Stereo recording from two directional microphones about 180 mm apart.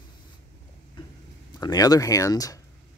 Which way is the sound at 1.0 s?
25° left (ahead or behind).